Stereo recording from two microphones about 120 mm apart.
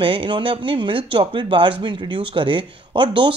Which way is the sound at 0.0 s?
45° right (ahead or behind).